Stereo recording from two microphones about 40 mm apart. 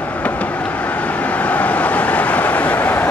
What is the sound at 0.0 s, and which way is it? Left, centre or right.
Vehicle, left.